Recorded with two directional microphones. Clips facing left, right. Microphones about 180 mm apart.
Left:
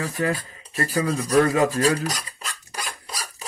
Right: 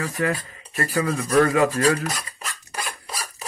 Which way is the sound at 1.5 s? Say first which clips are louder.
Right 1 dB; 35° left (ahead or behind).